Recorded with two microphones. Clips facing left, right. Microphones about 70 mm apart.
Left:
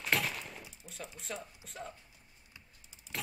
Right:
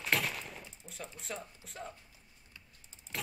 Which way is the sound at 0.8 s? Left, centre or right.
Right.